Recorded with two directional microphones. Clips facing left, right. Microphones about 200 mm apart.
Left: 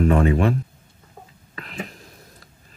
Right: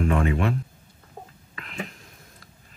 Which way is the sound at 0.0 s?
35° left (ahead or behind).